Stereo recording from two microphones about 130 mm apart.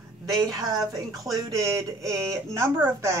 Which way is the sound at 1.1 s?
25° right (ahead or behind).